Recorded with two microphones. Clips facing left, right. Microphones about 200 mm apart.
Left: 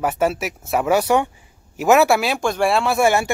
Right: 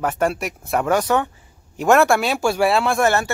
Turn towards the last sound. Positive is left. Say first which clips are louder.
# left 1 dB
turn(degrees=10)  # may be behind; listen again after turning